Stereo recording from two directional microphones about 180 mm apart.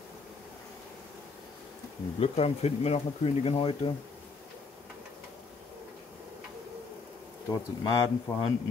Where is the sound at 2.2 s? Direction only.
35° left (ahead or behind).